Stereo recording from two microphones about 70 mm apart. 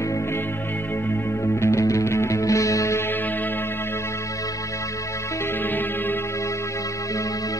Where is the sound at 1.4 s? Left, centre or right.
Left.